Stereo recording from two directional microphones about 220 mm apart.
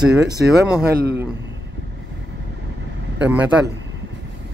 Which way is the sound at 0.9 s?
45° right (ahead or behind).